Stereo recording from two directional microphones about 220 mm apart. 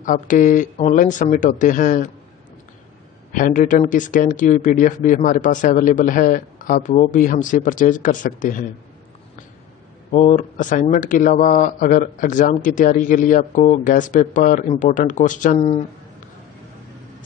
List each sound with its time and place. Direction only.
0.0 s speech: 35° left (ahead or behind)
3.3 s speech: 35° left (ahead or behind)
10.1 s speech: 35° left (ahead or behind)